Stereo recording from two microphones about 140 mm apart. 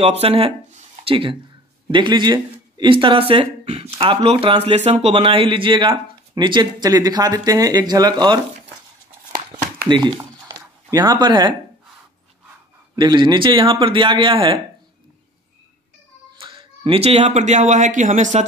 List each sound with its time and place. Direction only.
0.0 s speech: 45° right (ahead or behind); by 8.4 s 30° right (ahead or behind)
9.8 s speech: 35° right (ahead or behind)
12.9 s speech: 35° right (ahead or behind)
16.3 s speech: 35° right (ahead or behind); by 18.4 s 60° right (ahead or behind)